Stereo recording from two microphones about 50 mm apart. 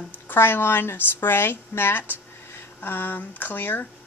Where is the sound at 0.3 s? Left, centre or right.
Left.